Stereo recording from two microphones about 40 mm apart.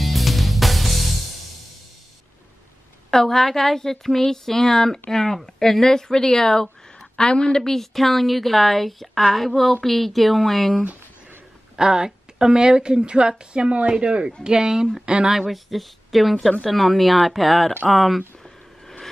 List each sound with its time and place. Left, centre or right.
0.0 s music: centre
3.1 s a woman's voice: centre
11.7 s a woman's voice: centre